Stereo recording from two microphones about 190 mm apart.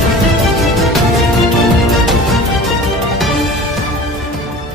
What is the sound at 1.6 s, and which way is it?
Music, centre (ahead or behind).